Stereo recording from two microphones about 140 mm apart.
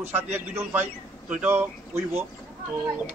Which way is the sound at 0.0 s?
15° right (ahead or behind).